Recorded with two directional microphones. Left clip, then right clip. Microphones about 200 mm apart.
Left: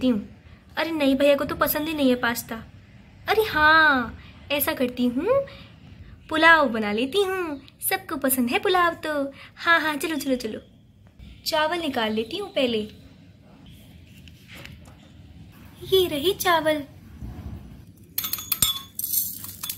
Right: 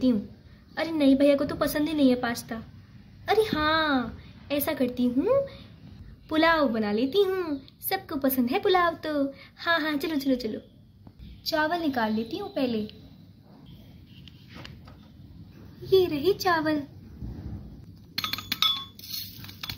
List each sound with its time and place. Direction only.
0.7 s a child's voice: centre (ahead or behind)
15.9 s a woman's voice: 15° left (ahead or behind)
18.2 s chink: centre (ahead or behind)